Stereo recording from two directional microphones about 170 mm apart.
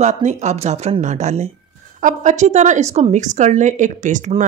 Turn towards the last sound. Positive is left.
turn(degrees=-45)  # may be behind; listen again after turning